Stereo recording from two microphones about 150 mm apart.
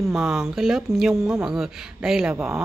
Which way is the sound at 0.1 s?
5° right (ahead or behind).